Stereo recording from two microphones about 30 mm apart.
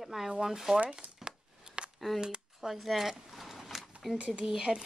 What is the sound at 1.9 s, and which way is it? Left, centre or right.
Speech, centre.